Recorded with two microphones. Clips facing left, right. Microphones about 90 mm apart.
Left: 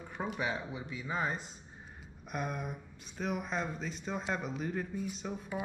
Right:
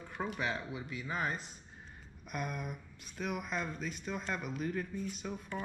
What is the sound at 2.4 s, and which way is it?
Speech, 35° left (ahead or behind).